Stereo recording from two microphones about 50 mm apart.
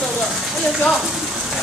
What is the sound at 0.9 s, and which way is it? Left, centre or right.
Rain on surface, centre.